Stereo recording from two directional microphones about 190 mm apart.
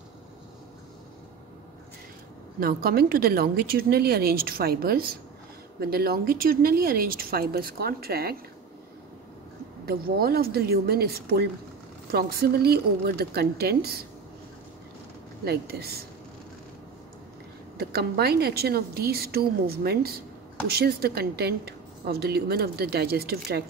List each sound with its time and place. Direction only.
2.6 s speech: 55° right (ahead or behind)
9.8 s a woman's voice: 55° right (ahead or behind)
15.4 s a woman's voice: 55° right (ahead or behind)
17.7 s a woman's voice: 55° right (ahead or behind)